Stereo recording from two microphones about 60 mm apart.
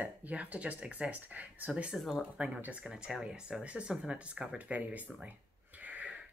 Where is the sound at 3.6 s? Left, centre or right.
Centre.